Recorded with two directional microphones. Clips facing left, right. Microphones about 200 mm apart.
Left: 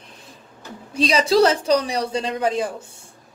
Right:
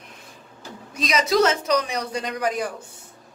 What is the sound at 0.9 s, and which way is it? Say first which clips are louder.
A man's voice: left 4 dB; 30° left (ahead or behind).